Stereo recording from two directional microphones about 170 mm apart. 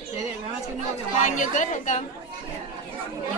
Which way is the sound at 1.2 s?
50° left (ahead or behind).